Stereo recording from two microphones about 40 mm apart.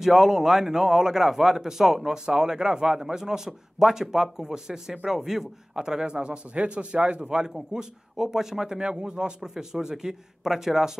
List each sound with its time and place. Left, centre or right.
0.0 s a man's voice: centre
5.9 s a man's voice: centre
7.5 s a man's voice: centre